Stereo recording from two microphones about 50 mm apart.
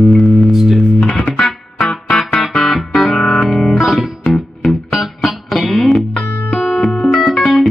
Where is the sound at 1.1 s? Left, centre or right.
Left.